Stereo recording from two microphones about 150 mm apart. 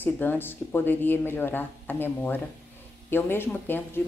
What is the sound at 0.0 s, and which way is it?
A woman's voice, 15° left (ahead or behind).